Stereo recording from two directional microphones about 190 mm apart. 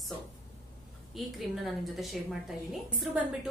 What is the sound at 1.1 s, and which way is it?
Speech, centre (ahead or behind).